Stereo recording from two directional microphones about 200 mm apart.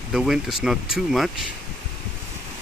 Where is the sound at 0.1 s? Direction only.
Centre (ahead or behind).